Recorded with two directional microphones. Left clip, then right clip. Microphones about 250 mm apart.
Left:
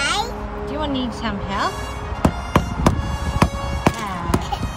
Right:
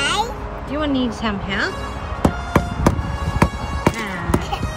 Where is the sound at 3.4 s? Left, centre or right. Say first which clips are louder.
Even; centre.